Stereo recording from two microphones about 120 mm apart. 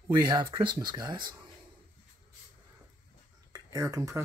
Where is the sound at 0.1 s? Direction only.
40° right (ahead or behind).